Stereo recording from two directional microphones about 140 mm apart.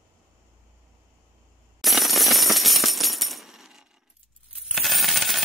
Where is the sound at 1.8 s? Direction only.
Centre (ahead or behind).